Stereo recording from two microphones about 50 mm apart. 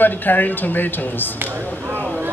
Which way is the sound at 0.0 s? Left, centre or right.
Left.